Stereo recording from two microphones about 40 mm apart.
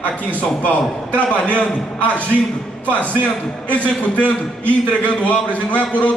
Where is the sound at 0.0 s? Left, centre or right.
Left.